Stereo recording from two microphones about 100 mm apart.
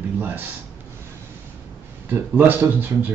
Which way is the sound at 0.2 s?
20° right (ahead or behind).